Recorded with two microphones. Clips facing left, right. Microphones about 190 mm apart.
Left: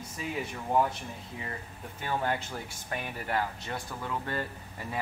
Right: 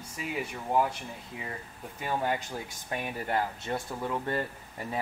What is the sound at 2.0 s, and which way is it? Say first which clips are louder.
Speech: right 1 dB; 10° right (ahead or behind).